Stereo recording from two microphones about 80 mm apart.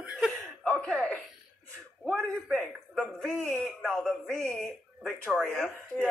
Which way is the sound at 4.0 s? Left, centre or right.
Centre.